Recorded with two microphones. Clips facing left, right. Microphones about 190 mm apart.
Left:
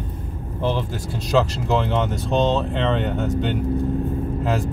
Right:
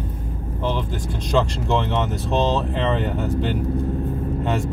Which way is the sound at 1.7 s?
Centre (ahead or behind).